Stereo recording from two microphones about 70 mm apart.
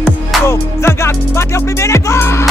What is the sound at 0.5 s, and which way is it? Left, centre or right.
Music, left.